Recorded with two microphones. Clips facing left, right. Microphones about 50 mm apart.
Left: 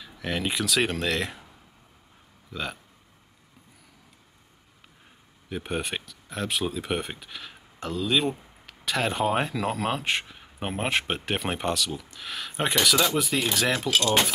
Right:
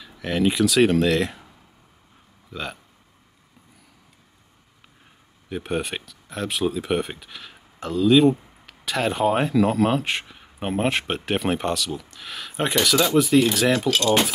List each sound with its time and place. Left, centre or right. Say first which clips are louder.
0.0 s speech: right 7 dB; centre
2.5 s speech: right 1 dB; centre
5.5 s speech: right 4 dB; centre